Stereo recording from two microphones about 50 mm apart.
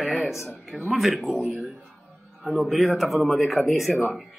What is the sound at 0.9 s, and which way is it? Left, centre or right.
Speech, centre.